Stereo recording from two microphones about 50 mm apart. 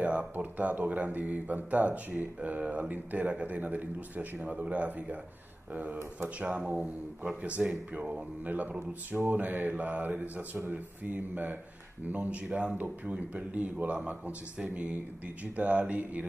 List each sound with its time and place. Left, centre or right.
0.0 s speech: right
7.4 s speech: right
8.1 s mantra: right
12.1 s speech: right